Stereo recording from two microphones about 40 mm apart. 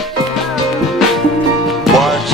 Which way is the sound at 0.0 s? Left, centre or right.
Centre.